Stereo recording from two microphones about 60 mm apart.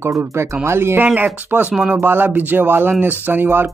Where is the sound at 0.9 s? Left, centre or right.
Right.